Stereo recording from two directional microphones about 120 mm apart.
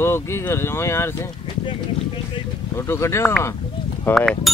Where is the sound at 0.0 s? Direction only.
20° left (ahead or behind).